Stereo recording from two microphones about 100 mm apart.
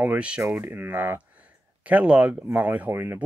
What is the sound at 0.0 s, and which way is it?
Speech, 15° right (ahead or behind).